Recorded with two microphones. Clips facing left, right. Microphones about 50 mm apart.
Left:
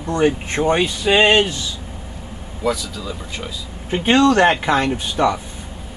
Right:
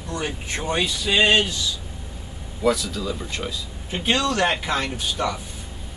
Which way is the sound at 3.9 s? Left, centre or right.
Left.